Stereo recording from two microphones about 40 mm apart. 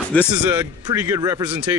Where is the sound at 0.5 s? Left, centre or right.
Right.